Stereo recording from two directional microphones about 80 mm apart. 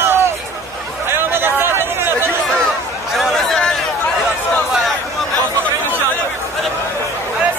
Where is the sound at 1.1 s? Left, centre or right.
Right.